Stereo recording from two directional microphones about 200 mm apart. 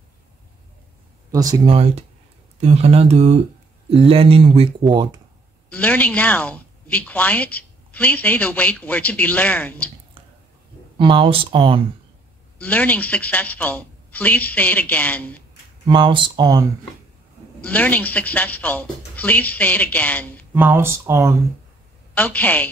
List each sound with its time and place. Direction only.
1.3 s speech: 15° right (ahead or behind)
1.7 s speech: 30° right (ahead or behind)
5.7 s a woman's voice: 5° left (ahead or behind)
11.0 s speech: 25° right (ahead or behind)
12.5 s a woman's voice: 5° left (ahead or behind)
15.9 s speech: 25° right (ahead or behind)
17.6 s a woman's voice: 10° left (ahead or behind)
20.5 s speech: 10° right (ahead or behind)
22.1 s a woman's voice: 10° left (ahead or behind)